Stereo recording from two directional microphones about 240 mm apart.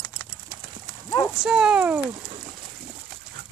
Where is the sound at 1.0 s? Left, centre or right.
Centre.